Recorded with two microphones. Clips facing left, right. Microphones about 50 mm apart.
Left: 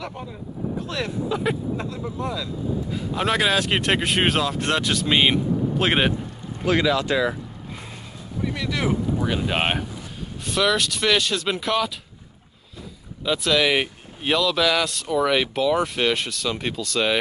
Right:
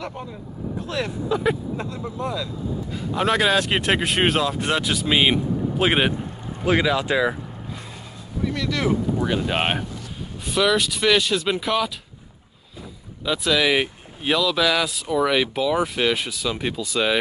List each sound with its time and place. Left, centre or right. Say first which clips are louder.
0.0 s speech: right 1 dB; centre
6.6 s speech: even; centre
8.5 s speech: right 2 dB; centre
9.5 s speech: even; centre
13.2 s speech: even; centre